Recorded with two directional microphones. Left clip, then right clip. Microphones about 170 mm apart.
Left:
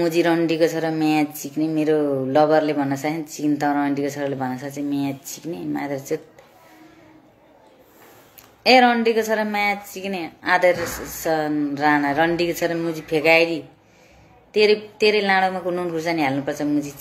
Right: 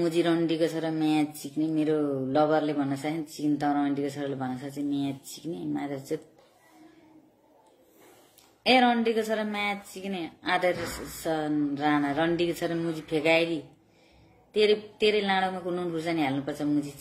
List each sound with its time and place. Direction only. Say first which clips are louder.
0.0 s a woman's voice: left 7 dB; 20° right (ahead or behind)
8.6 s a woman's voice: left 8 dB; 15° right (ahead or behind)